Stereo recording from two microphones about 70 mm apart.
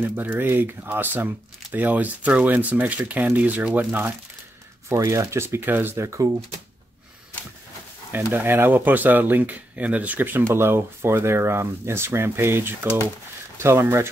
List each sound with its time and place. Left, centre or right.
0.0 s speech: right
4.8 s speech: right
5.9 s speech: right
8.1 s speech: right
10.5 s speech: right